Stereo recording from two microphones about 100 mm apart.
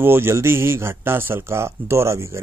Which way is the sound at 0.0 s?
25° right (ahead or behind).